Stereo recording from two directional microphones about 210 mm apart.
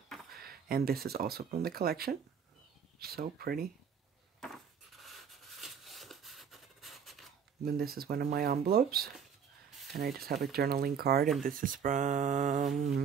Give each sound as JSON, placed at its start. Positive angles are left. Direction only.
{"t": 0.4, "sound": "speech", "side_deg": -45}
{"t": 4.4, "sound": "dishes", "side_deg": 0}
{"t": 7.6, "sound": "speech", "side_deg": -45}